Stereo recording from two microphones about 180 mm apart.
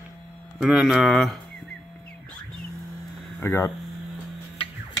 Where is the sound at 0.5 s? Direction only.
Centre (ahead or behind).